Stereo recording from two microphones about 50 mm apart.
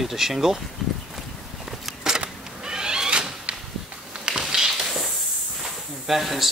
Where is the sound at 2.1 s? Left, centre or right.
Centre.